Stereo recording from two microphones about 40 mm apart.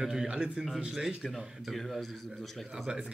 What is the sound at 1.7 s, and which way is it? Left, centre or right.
Speech, centre.